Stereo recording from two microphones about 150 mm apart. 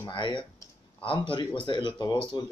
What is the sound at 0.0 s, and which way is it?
Speech, 30° left (ahead or behind).